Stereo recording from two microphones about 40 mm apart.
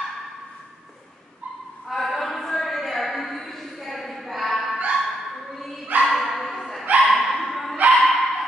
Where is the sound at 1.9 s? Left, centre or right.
Centre.